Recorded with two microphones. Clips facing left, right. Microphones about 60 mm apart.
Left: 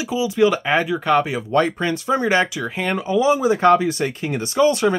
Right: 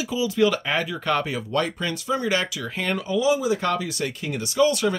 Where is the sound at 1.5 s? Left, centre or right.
Left.